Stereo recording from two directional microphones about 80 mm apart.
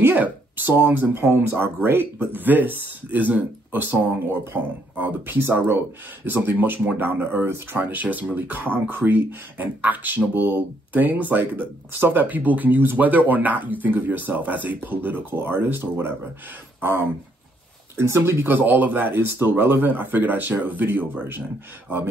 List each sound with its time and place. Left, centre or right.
0.0 s speech: right
17.9 s speech: right